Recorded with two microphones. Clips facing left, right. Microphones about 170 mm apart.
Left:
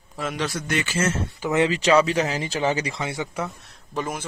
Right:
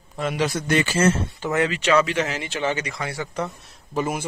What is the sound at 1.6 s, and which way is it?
Speech, 35° left (ahead or behind).